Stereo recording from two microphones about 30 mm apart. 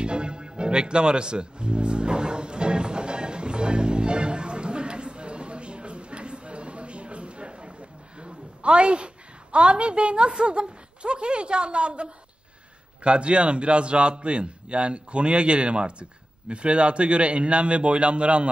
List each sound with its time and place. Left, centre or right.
0.0 s music: right
8.2 s a sound: right
13.0 s a man's voice: right